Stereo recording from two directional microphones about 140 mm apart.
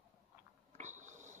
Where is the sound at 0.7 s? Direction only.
60° right (ahead or behind).